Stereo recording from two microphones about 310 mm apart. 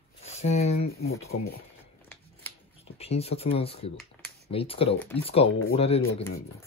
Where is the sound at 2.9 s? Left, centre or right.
Centre.